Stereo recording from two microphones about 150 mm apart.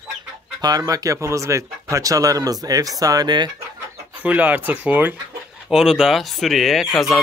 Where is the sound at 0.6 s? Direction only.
25° right (ahead or behind).